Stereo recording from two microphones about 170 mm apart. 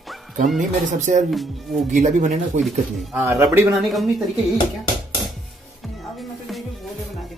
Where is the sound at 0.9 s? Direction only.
45° right (ahead or behind).